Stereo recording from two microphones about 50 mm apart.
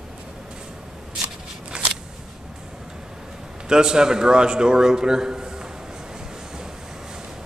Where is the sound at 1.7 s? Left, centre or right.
Right.